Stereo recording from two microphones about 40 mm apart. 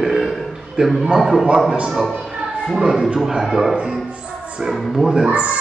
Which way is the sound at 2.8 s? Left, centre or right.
Centre.